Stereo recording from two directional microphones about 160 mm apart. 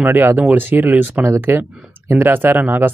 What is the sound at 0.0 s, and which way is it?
Speech, 15° right (ahead or behind).